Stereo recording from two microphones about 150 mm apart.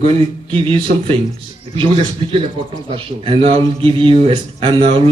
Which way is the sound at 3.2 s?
40° right (ahead or behind).